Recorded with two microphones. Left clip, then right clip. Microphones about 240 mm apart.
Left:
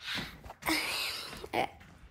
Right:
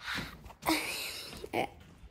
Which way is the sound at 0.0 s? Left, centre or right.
Centre.